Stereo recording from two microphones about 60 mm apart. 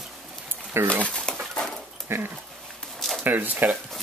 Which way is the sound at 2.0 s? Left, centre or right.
Right.